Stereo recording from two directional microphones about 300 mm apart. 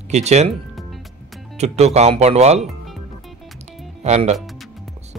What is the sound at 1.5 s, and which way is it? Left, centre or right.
Speech, right.